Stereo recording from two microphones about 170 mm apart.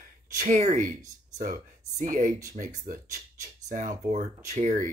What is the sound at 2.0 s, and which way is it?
Speech, 50° right (ahead or behind).